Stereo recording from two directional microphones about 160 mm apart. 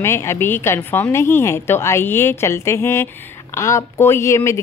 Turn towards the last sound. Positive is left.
turn(degrees=15)  # may be behind; listen again after turning